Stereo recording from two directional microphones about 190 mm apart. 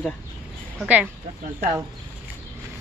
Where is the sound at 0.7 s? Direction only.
5° right (ahead or behind).